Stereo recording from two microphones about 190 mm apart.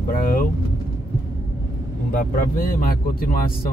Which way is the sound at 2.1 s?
45° left (ahead or behind).